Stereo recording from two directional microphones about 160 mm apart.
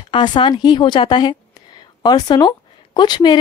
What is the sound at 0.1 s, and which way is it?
A woman's voice, 30° left (ahead or behind).